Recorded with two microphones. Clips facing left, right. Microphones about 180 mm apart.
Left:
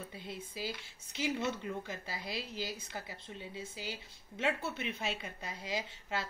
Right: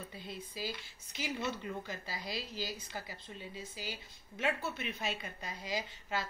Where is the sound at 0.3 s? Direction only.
20° left (ahead or behind).